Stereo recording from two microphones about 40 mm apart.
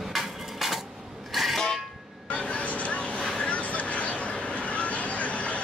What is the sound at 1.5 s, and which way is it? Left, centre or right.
Vehicle horn, centre.